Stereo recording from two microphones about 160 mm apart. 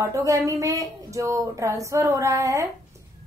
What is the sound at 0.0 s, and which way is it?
A woman's voice, 20° right (ahead or behind).